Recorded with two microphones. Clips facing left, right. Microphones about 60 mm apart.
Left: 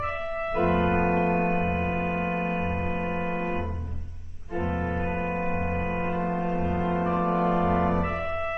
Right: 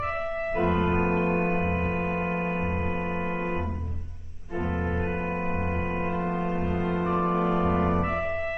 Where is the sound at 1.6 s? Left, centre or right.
Right.